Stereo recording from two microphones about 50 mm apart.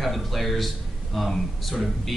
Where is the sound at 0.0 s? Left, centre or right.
Centre.